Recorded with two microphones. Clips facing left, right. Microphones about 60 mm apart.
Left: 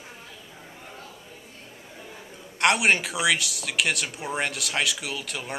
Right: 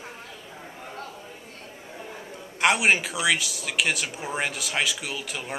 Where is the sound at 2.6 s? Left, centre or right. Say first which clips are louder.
Even; centre.